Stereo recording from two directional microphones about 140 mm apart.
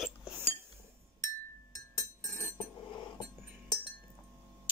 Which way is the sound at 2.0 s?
20° left (ahead or behind).